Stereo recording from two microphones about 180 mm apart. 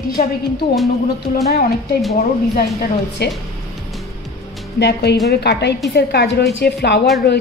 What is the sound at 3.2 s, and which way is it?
Speech, 65° left (ahead or behind).